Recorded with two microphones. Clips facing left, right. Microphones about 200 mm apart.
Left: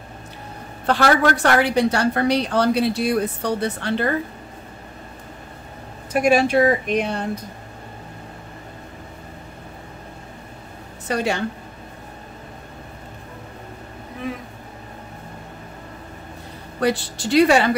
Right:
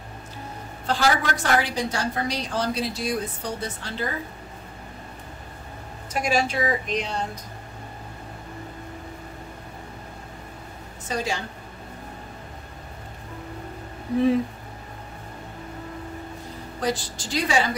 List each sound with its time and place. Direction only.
0.8 s a woman's voice: 60° left (ahead or behind)
6.1 s a woman's voice: 60° left (ahead or behind)
11.1 s a woman's voice: 65° left (ahead or behind)
16.8 s a woman's voice: 65° left (ahead or behind)